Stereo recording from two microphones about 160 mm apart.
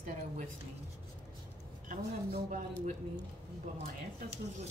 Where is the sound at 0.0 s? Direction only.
50° right (ahead or behind).